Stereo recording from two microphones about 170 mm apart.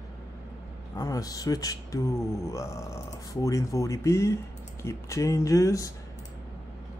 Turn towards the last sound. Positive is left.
turn(degrees=20)  # may be behind; listen again after turning